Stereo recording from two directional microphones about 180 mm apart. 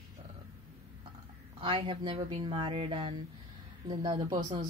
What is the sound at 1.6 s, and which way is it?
Speech, 25° right (ahead or behind).